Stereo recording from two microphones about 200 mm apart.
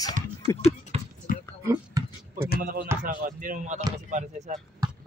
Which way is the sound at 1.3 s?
45° left (ahead or behind).